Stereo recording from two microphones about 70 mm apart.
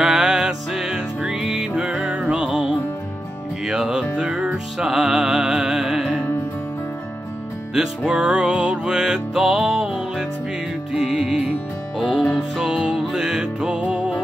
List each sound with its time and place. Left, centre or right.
0.0 s music: centre
7.7 s music: centre